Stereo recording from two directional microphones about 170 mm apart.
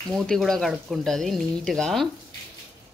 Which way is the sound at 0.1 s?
Centre (ahead or behind).